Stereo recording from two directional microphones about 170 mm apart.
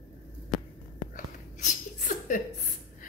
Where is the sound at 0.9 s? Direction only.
50° left (ahead or behind).